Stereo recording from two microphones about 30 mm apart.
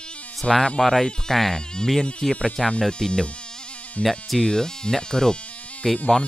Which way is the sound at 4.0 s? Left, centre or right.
Left.